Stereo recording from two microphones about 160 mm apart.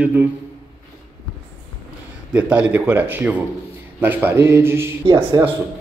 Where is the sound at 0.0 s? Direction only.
10° right (ahead or behind).